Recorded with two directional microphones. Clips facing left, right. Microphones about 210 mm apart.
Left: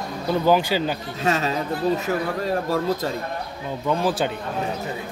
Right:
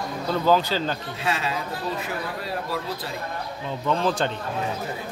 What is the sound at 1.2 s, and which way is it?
Speech, 40° left (ahead or behind).